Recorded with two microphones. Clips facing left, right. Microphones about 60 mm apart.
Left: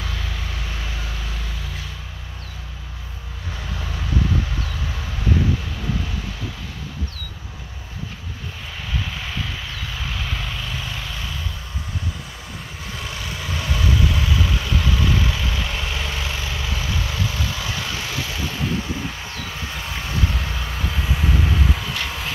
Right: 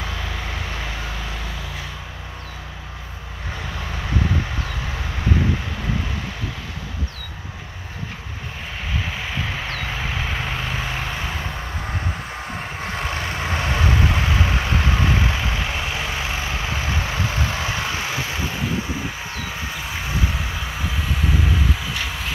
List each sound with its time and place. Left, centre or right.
9.7 s vehicle: right
19.3 s vehicle: centre